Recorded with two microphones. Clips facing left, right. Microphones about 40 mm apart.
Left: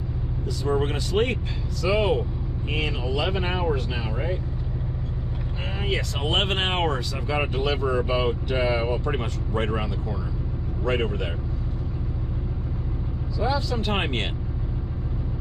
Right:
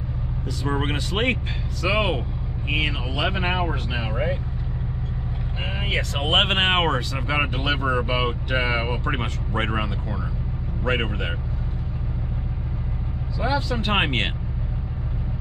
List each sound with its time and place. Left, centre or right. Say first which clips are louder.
0.7 s speech: left 1 dB; right
5.9 s speech: right 2 dB; right
10.9 s speech: right 1 dB; right
13.4 s speech: right 1 dB; right